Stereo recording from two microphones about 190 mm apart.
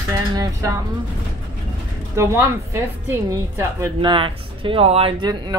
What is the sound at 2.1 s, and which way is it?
A woman's voice, 15° right (ahead or behind).